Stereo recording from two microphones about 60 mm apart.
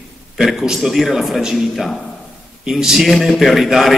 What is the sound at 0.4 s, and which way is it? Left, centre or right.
A man's voice, centre.